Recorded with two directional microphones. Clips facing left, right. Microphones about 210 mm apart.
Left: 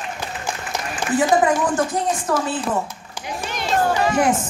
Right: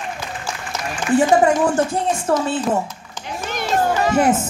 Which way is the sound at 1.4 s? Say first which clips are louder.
Right 3 dB; 25° right (ahead or behind).